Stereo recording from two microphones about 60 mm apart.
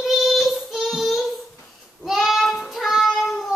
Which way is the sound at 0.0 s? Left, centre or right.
Centre.